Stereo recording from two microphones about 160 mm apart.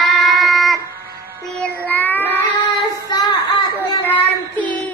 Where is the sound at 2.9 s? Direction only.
25° left (ahead or behind).